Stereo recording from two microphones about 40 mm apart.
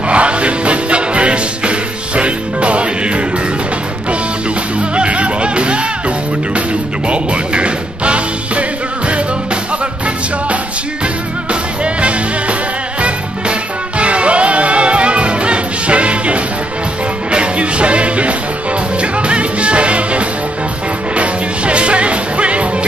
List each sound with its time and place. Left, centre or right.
0.1 s music: right
4.7 s music: right
11.8 s music: right